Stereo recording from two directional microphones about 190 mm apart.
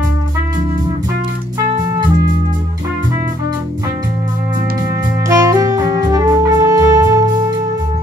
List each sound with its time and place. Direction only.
5.3 s music: 15° right (ahead or behind)